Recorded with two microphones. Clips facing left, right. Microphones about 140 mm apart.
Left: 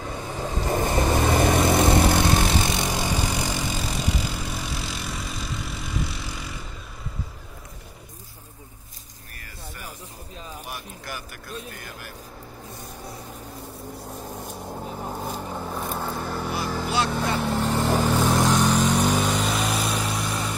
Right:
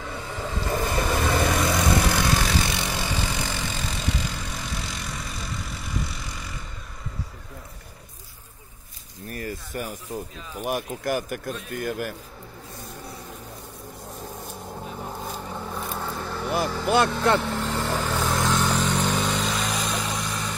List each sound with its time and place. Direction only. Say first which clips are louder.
0.0 s vehicle: left 2 dB; 20° left (ahead or behind)
9.3 s a sound: right 11 dB; 40° right (ahead or behind)
10.6 s speech: right 10 dB; 50° right (ahead or behind)
14.7 s vehicle: left 2 dB; 15° left (ahead or behind)